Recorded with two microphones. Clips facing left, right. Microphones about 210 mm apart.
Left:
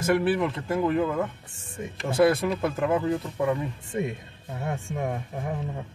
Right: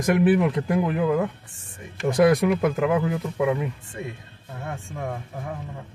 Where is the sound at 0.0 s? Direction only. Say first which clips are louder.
Right 4 dB; 15° right (ahead or behind).